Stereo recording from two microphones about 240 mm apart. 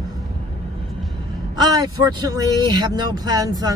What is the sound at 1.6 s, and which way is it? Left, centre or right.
Speech, centre.